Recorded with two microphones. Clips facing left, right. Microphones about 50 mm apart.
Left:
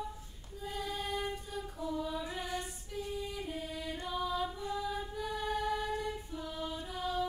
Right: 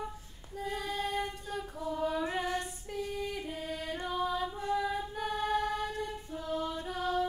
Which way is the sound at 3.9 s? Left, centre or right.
Right.